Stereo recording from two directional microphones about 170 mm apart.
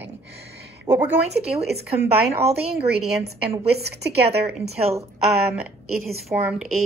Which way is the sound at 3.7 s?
75° right (ahead or behind).